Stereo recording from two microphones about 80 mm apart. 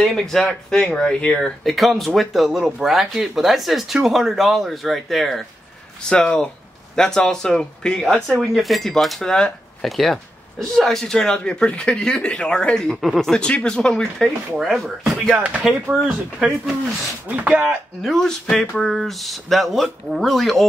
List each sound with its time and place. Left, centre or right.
0.0 s speech: centre
15.4 s speech: centre
17.3 s speech: centre
17.6 s speech: centre